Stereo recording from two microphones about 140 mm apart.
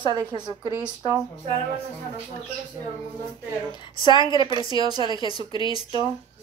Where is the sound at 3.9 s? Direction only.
35° left (ahead or behind).